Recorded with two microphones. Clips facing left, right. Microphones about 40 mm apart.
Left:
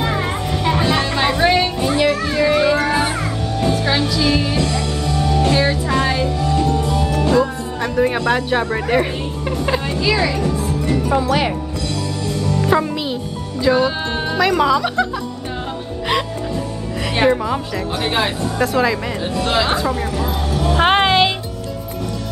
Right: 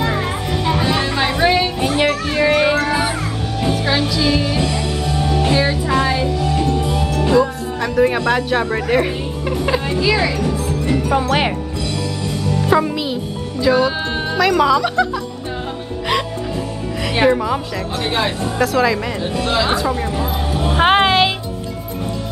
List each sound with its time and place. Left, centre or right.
0.1 s music: centre
2.0 s music: right
2.7 s music: centre
3.5 s music: centre
4.0 s music: centre
4.6 s music: centre
5.5 s music: centre
6.4 s music: centre
7.3 s speech: centre
9.5 s music: centre
12.4 s music: centre
17.1 s a woman's voice: centre
20.2 s speech: right
20.7 s music: centre